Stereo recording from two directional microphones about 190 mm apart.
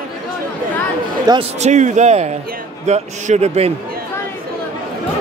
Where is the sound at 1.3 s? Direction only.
20° right (ahead or behind).